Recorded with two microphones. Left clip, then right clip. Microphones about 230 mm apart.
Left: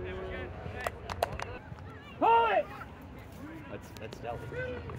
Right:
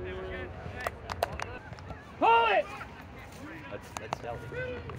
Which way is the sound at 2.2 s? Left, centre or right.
Centre.